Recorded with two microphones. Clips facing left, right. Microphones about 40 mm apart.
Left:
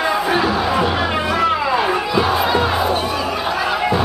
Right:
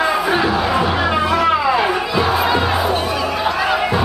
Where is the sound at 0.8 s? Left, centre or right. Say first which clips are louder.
Right 1 dB; right.